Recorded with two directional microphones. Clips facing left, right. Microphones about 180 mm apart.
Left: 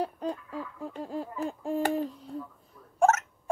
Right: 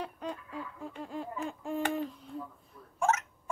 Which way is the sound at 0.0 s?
35° left (ahead or behind).